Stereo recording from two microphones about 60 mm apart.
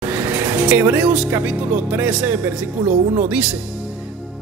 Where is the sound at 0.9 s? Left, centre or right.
Right.